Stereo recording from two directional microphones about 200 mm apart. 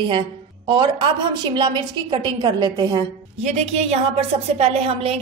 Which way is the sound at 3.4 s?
35° right (ahead or behind).